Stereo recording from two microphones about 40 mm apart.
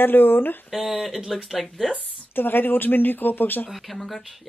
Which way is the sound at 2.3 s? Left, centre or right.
Left.